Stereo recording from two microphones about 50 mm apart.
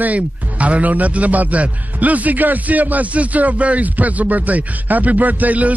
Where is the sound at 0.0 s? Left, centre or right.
Right.